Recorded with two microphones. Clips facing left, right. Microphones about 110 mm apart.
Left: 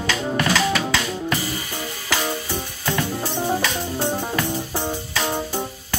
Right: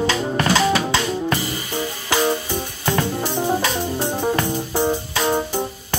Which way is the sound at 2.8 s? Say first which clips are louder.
Right 3 dB; 20° right (ahead or behind).